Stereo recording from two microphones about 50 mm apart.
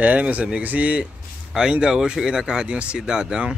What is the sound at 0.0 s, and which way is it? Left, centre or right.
Speech, right.